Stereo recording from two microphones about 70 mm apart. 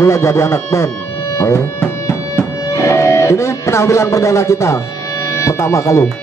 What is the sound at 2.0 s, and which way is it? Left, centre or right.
Music, left.